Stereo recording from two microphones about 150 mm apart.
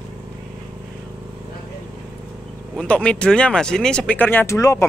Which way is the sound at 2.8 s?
5° left (ahead or behind).